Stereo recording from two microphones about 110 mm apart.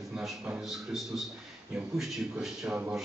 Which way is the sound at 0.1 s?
Centre (ahead or behind).